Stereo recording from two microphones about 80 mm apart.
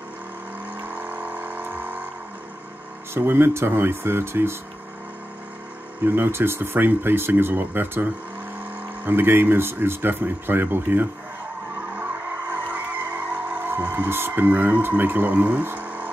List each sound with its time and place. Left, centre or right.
0.7 s a sound: right
3.2 s speech: right
6.0 s speech: right
12.4 s music: right